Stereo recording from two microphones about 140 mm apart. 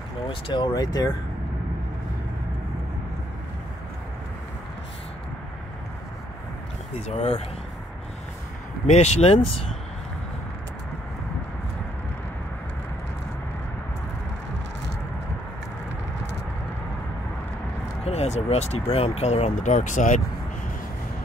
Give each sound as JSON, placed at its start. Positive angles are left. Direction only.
{"t": 0.3, "sound": "speech", "side_deg": 35}
{"t": 7.1, "sound": "speech", "side_deg": 50}
{"t": 8.8, "sound": "speech", "side_deg": 55}
{"t": 18.0, "sound": "speech", "side_deg": 50}